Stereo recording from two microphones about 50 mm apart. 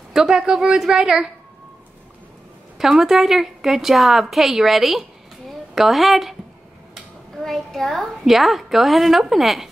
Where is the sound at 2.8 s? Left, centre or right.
Centre.